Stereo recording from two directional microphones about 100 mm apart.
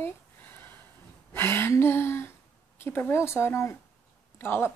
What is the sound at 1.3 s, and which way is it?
Speech, 20° left (ahead or behind).